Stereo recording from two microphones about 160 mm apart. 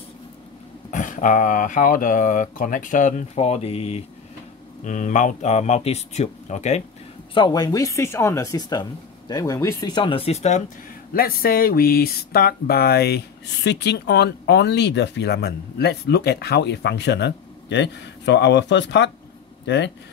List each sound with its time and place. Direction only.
0.9 s speech: 55° left (ahead or behind)
4.8 s speech: 50° left (ahead or behind)
7.3 s speech: 25° left (ahead or behind); by 10.6 s 45° left (ahead or behind)
11.1 s speech: 70° left (ahead or behind); by 19.9 s 90° left